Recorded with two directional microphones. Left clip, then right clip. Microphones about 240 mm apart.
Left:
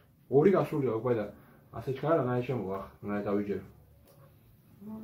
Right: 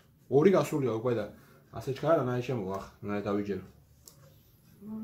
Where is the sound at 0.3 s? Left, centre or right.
Right.